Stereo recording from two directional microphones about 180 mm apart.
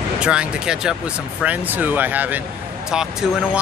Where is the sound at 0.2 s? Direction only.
5° right (ahead or behind).